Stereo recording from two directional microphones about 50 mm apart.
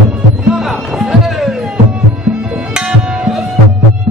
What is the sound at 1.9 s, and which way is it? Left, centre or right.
Tabla, right.